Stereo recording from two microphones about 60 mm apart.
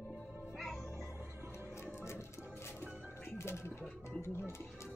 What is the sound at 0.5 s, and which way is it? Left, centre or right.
Music, centre.